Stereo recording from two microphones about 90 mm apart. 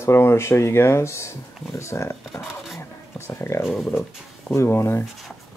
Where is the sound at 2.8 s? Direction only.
30° left (ahead or behind).